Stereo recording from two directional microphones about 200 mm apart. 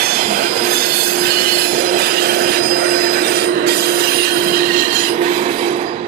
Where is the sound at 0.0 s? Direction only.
50° right (ahead or behind); by 5.9 s 35° right (ahead or behind).